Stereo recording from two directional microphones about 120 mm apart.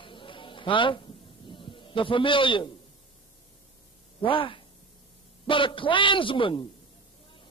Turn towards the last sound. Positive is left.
turn(degrees=45)  # may be behind; listen again after turning